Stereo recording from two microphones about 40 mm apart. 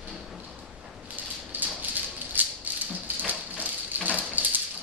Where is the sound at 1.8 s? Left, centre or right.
Right.